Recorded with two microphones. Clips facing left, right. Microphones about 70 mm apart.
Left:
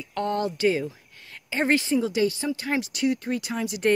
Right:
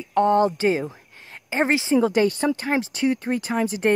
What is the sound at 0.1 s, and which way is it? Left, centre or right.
Speech, right.